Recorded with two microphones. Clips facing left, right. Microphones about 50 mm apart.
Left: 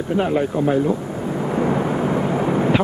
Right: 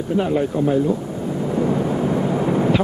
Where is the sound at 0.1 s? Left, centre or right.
Left.